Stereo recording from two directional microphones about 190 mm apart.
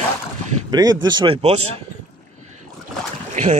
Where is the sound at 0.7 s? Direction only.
20° right (ahead or behind).